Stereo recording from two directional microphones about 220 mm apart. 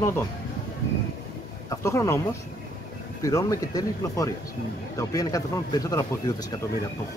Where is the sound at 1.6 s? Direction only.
15° left (ahead or behind).